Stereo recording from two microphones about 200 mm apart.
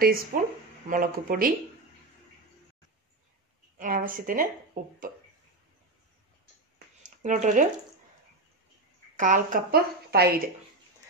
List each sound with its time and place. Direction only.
0.0 s a woman's voice: 45° right (ahead or behind)
3.7 s a woman's voice: 45° right (ahead or behind)
7.0 s a sound: 40° right (ahead or behind)
9.1 s a woman's voice: 40° right (ahead or behind)